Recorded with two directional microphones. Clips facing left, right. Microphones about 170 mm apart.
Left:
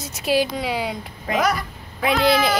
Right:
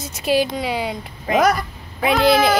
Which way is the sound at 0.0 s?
Centre (ahead or behind).